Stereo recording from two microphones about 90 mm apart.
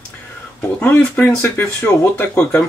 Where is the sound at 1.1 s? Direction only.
25° left (ahead or behind).